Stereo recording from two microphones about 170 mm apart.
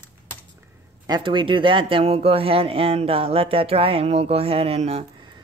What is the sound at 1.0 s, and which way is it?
Speech, 25° right (ahead or behind).